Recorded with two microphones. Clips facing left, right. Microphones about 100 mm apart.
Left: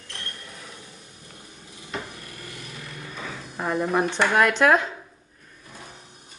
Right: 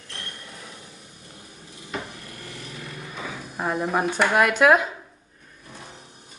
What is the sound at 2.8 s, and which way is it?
Speech, 5° right (ahead or behind).